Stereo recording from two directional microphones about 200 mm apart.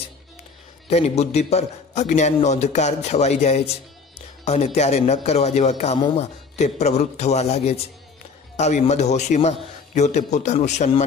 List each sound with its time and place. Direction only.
0.8 s a man's voice: 30° left (ahead or behind)